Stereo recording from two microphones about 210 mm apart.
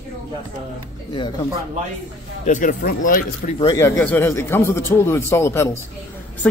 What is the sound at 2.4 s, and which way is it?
Speech, 35° left (ahead or behind).